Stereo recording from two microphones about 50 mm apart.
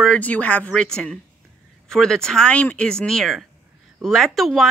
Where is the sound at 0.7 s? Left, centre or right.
Centre.